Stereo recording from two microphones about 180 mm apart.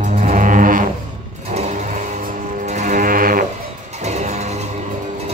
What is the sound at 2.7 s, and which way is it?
Music, 45° right (ahead or behind).